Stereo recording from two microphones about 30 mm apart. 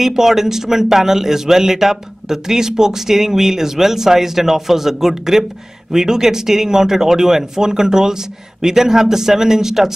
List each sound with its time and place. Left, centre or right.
0.0 s a man's voice: centre